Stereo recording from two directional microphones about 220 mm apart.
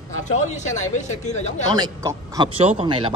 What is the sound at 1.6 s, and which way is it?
Speech, 20° right (ahead or behind).